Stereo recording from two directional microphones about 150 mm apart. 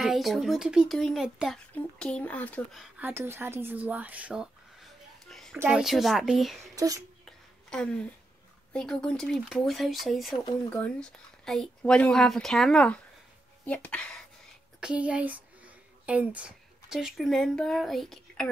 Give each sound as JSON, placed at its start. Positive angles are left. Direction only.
{"t": 0.0, "sound": "speech", "side_deg": 0}
{"t": 2.8, "sound": "a woman's voice", "side_deg": -15}
{"t": 6.7, "sound": "speech", "side_deg": -25}
{"t": 7.2, "sound": "a sound", "side_deg": 5}
{"t": 8.7, "sound": "speech", "side_deg": 5}
{"t": 10.3, "sound": "speech", "side_deg": 30}
{"t": 10.7, "sound": "speech", "side_deg": 5}
{"t": 14.8, "sound": "speech", "side_deg": -5}